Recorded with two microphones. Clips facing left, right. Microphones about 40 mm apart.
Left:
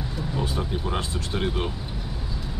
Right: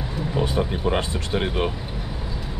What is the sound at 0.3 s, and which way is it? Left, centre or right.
Speech, right.